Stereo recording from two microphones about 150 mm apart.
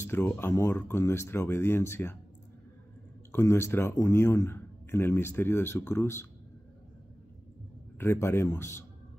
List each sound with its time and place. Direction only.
0.0 s speech: 15° left (ahead or behind)
3.3 s speech: 15° left (ahead or behind)
8.0 s speech: 15° left (ahead or behind)